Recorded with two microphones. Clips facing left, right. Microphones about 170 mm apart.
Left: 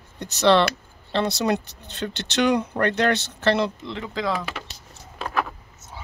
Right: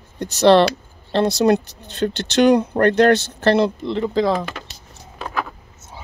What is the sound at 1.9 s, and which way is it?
Speech, 45° right (ahead or behind).